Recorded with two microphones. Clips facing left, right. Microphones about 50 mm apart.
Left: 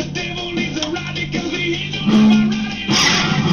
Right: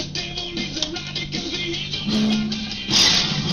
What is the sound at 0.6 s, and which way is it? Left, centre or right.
Music, left.